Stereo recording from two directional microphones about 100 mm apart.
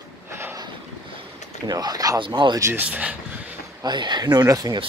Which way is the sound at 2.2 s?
55° right (ahead or behind).